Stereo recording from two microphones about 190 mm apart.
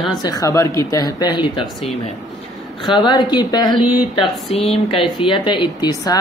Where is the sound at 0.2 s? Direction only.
20° left (ahead or behind).